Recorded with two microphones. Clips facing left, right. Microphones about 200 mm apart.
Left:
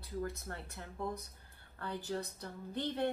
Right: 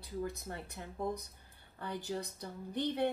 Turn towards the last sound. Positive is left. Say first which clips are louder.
# right 2 dB
turn(degrees=-15)  # may be behind; listen again after turning